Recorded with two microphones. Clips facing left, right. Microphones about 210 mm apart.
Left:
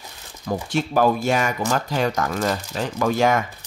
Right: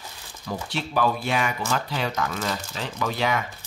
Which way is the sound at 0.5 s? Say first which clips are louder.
Left 7 dB; 45° left (ahead or behind).